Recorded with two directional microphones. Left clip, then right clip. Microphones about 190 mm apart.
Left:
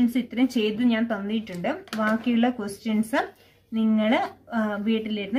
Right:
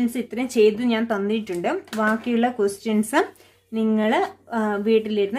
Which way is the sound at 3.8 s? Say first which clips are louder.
Right 2 dB; 40° right (ahead or behind).